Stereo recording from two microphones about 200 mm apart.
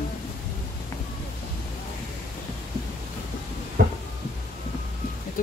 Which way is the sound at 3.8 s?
50° right (ahead or behind).